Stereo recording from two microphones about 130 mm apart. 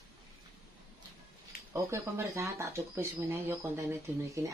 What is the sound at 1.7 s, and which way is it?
Speech, 20° right (ahead or behind).